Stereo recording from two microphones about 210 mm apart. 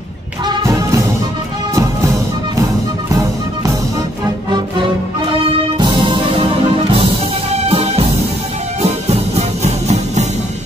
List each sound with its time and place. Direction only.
0.5 s music: 15° right (ahead or behind)
5.3 s music: 20° right (ahead or behind)